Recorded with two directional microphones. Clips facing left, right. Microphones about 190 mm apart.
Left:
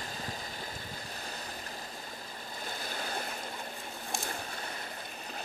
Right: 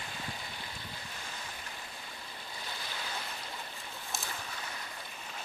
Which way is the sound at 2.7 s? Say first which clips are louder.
Left 4 dB; 45° left (ahead or behind).